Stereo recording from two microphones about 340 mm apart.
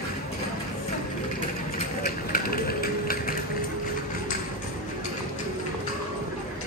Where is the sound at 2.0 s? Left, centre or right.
Left.